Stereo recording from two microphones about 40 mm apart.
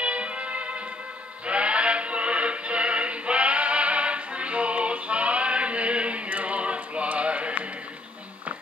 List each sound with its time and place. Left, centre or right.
0.0 s music: right